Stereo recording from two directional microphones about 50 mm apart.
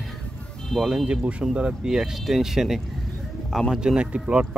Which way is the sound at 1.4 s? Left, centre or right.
Centre.